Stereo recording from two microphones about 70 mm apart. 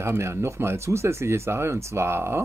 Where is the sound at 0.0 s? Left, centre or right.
Right.